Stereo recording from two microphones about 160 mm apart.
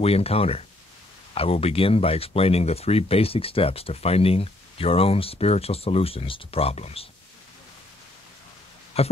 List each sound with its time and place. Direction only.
0.0 s speech: 40° left (ahead or behind)
9.0 s speech: 40° left (ahead or behind)